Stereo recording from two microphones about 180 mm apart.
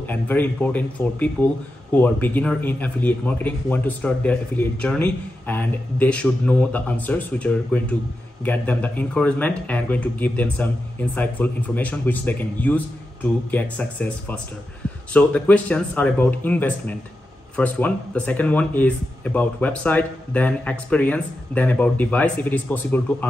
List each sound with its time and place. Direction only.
0.0 s speech: 10° left (ahead or behind)